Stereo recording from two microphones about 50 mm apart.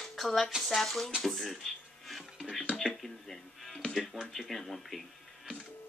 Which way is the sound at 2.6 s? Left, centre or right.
Left.